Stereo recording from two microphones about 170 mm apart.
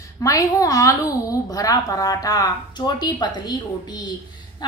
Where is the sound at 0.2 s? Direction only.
20° left (ahead or behind).